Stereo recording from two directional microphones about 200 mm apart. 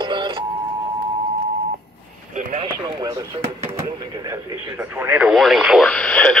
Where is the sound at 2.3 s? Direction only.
40° right (ahead or behind).